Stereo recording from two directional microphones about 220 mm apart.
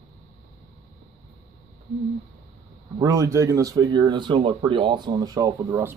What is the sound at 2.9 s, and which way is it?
Speech, 15° right (ahead or behind).